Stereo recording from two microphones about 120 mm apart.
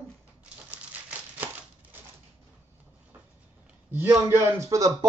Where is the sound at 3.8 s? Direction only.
15° right (ahead or behind).